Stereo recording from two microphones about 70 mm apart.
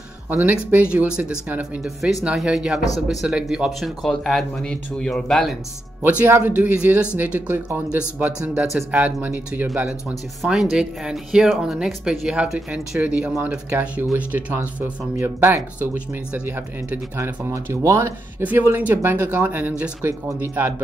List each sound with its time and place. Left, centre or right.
0.3 s speech: right
0.9 s speech: centre
4.0 s speech: centre
6.0 s speech: right
7.3 s speech: right
9.0 s speech: right
10.4 s speech: centre
13.0 s speech: centre
15.1 s speech: right
18.4 s speech: right